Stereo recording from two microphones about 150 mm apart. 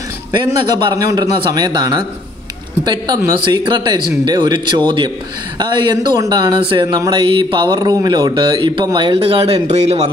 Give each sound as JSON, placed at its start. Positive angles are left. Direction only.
{"t": 0.8, "sound": "speech", "side_deg": -25}